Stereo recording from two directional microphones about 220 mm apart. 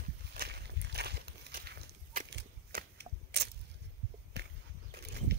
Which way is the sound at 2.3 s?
50° right (ahead or behind).